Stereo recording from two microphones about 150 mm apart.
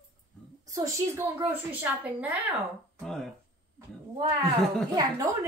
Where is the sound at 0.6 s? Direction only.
20° right (ahead or behind).